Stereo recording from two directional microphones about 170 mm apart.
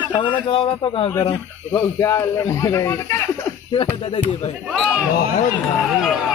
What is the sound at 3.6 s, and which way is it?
Speech, 30° left (ahead or behind).